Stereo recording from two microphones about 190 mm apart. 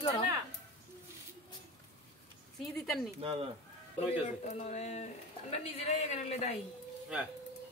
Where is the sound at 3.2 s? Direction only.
30° right (ahead or behind).